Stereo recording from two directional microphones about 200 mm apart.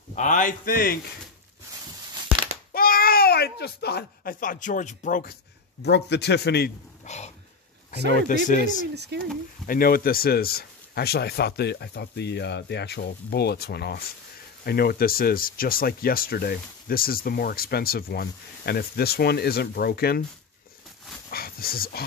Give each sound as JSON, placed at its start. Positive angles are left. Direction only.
{"t": 0.1, "sound": "a man's voice", "side_deg": 40}
{"t": 2.7, "sound": "speech", "side_deg": 45}
{"t": 7.1, "sound": "a sound", "side_deg": 35}
{"t": 8.1, "sound": "a man's voice", "side_deg": 40}
{"t": 8.9, "sound": "speech", "side_deg": -55}
{"t": 9.7, "sound": "speech", "side_deg": 45}
{"t": 21.3, "sound": "speech", "side_deg": 50}